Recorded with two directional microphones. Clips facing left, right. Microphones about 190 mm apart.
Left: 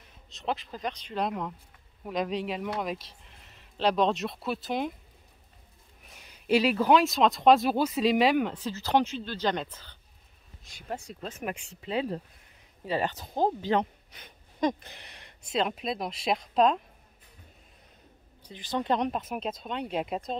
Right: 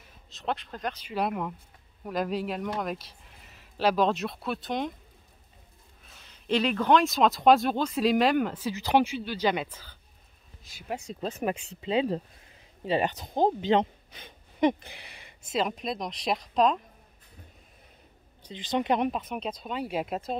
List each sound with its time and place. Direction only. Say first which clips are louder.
0.3 s speech: even; centre (ahead or behind)
6.0 s speech: left 2 dB; 10° left (ahead or behind)
11.1 s speech: right 6 dB; 35° right (ahead or behind)
11.8 s speech: right 4 dB; 25° right (ahead or behind)
14.7 s speech: right 3 dB; 10° right (ahead or behind)
18.4 s speech: right 3 dB; 20° right (ahead or behind)
19.0 s speech: right 1 dB; centre (ahead or behind)